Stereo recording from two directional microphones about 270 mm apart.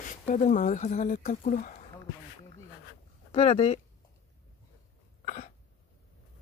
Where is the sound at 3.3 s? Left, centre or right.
Left.